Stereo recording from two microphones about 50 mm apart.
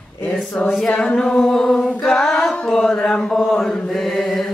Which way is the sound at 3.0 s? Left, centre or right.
Centre.